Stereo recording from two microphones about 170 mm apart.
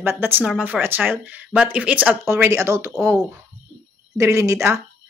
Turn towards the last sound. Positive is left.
turn(degrees=-20)  # may be behind; listen again after turning